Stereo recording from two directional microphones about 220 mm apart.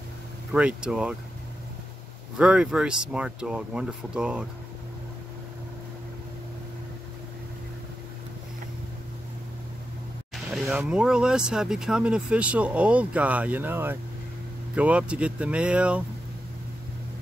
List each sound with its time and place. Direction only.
0.5 s speech: 5° right (ahead or behind)
2.3 s speech: 5° right (ahead or behind)
10.3 s speech: centre (ahead or behind)